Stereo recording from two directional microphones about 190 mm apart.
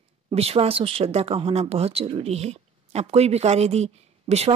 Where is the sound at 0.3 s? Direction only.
30° right (ahead or behind).